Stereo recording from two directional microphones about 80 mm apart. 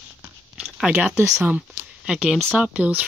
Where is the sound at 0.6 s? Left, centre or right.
Centre.